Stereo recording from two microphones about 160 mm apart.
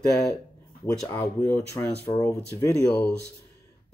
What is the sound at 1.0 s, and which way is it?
Speech, 15° left (ahead or behind).